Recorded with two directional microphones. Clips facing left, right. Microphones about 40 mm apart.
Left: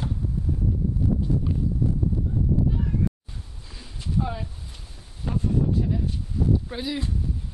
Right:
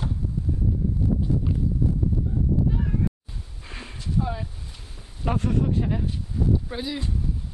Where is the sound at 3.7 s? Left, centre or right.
Right.